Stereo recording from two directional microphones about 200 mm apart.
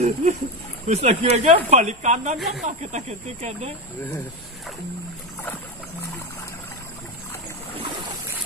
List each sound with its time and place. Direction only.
0.0 s speech: 30° right (ahead or behind)
2.3 s speech: centre (ahead or behind)
2.6 s speech: 35° right (ahead or behind)